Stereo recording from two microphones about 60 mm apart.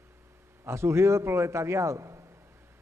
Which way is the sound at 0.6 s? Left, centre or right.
Right.